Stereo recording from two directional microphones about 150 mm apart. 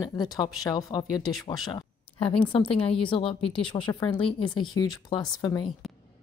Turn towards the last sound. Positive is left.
turn(degrees=25)  # may be behind; listen again after turning